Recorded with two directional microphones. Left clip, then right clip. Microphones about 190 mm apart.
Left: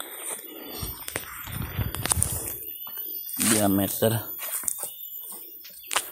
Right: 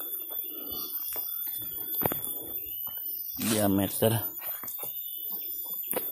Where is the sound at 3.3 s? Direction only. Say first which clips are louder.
Left 5 dB; 50° left (ahead or behind).